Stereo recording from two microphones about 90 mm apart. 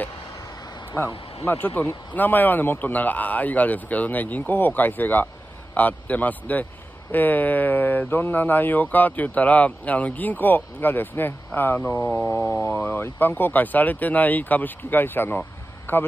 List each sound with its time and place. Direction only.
1.0 s speech: 25° left (ahead or behind)
11.8 s speech: 10° left (ahead or behind)
12.4 s speech: 20° left (ahead or behind)